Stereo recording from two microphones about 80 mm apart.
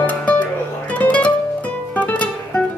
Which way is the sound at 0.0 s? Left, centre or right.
Centre.